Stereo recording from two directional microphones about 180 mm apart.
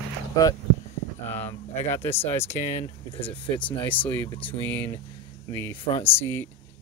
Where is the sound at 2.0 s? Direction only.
10° left (ahead or behind).